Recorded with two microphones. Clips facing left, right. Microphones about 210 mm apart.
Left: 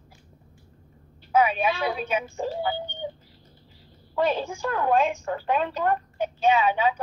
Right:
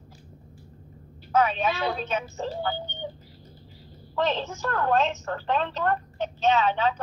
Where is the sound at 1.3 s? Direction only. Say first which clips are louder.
Left 1 dB; 10° left (ahead or behind).